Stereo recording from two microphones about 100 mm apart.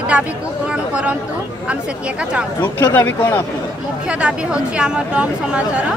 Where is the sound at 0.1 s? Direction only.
10° right (ahead or behind).